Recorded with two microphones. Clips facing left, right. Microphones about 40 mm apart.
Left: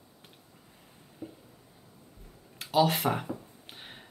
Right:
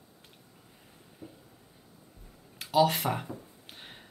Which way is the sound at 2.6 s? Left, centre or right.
Centre.